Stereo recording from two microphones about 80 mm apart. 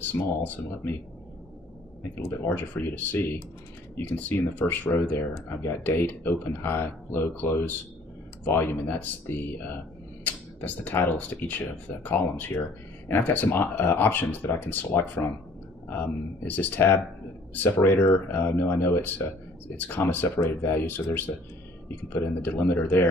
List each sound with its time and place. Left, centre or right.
0.1 s speech: left
2.1 s speech: left
5.3 s speech: left